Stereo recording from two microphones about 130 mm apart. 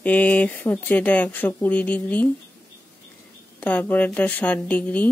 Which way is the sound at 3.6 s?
10° left (ahead or behind).